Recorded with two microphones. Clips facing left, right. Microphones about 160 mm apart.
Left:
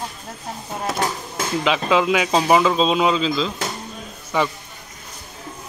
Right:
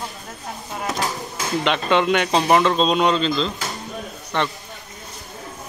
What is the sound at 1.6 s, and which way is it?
Speech, centre (ahead or behind).